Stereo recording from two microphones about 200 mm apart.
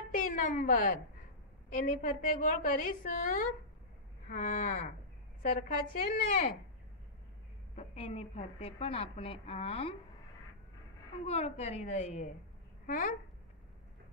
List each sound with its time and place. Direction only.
0.1 s a woman's voice: 40° left (ahead or behind)
7.7 s a woman's voice: 30° left (ahead or behind)
11.2 s a woman's voice: 30° left (ahead or behind)